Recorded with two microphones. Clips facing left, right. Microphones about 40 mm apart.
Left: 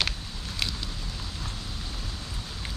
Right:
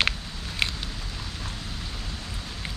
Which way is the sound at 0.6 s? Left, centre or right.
Right.